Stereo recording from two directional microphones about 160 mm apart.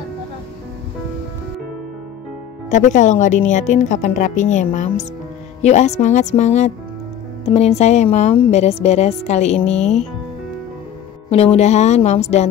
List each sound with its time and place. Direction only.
2.7 s a woman's voice: 50° left (ahead or behind)
9.7 s speech: 5° left (ahead or behind)
11.2 s a woman's voice: 40° left (ahead or behind)